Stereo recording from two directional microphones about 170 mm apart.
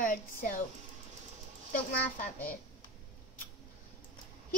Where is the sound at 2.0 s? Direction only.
10° left (ahead or behind).